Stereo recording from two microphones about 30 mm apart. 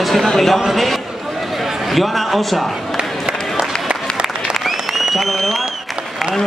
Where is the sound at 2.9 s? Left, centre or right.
Right.